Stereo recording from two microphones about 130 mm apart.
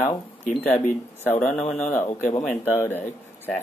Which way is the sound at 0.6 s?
15° left (ahead or behind).